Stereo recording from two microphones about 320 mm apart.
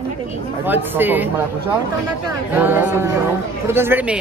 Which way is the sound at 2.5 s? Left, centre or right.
Centre.